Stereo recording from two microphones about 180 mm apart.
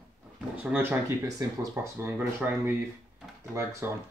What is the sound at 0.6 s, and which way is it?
Speech, 10° right (ahead or behind).